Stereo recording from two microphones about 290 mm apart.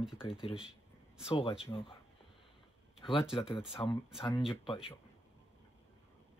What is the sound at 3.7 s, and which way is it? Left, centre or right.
Speech, centre.